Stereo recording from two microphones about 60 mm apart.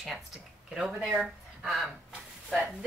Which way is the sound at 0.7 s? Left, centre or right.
Centre.